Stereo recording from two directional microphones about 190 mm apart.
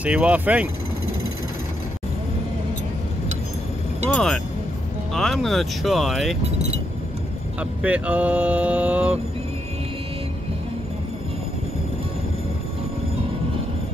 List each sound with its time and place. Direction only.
0.0 s speech: 5° right (ahead or behind)
4.1 s speech: centre (ahead or behind)
7.8 s speech: 5° right (ahead or behind)